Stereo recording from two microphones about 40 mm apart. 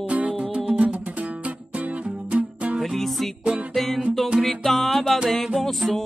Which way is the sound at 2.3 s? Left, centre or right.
Right.